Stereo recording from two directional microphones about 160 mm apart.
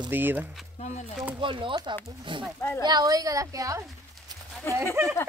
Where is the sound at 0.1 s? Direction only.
10° right (ahead or behind).